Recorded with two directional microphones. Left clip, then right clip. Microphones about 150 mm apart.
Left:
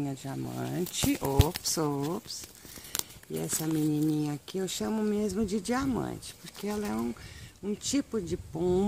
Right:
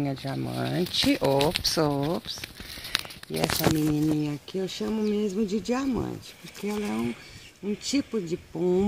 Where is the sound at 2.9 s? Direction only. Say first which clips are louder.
Right 8 dB; 30° left (ahead or behind).